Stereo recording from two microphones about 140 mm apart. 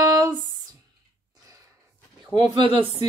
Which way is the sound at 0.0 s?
25° right (ahead or behind).